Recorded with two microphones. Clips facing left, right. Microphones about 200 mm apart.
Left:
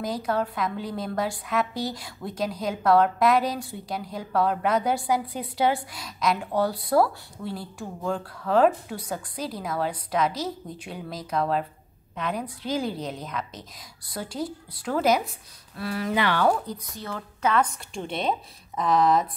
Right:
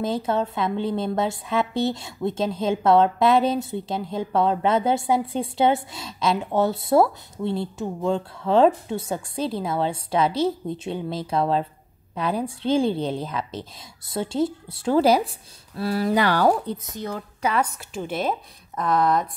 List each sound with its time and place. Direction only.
0.0 s a woman's voice: 25° right (ahead or behind)
16.7 s a woman's voice: 20° right (ahead or behind)
17.4 s a woman's voice: 10° right (ahead or behind)